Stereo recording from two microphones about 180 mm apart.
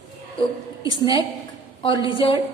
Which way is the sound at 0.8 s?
25° left (ahead or behind).